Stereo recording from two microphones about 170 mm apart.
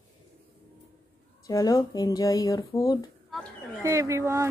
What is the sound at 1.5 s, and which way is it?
Speech, 20° left (ahead or behind).